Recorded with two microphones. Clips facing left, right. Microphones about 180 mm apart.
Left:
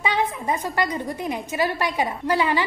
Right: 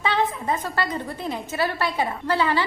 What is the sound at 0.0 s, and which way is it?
A woman's voice, 15° left (ahead or behind).